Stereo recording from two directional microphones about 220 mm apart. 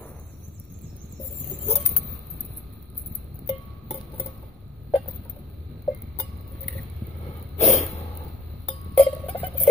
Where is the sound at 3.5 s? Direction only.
25° left (ahead or behind).